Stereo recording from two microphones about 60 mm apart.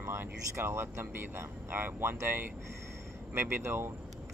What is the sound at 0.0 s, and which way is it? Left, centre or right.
Speech, right.